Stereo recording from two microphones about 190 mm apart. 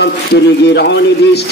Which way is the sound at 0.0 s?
60° left (ahead or behind).